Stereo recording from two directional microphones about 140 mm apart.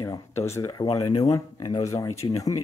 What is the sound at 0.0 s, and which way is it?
Speech, 20° left (ahead or behind).